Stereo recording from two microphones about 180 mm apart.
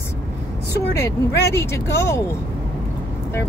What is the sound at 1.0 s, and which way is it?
Speech, 15° left (ahead or behind).